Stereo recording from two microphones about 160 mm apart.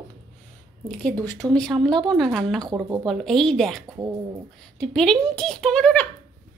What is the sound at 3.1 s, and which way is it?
Speech, centre (ahead or behind).